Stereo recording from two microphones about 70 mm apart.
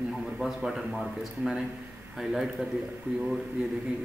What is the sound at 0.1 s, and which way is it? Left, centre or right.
Speech, centre.